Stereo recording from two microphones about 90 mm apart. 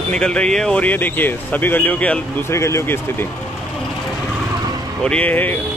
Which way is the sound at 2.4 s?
30° left (ahead or behind).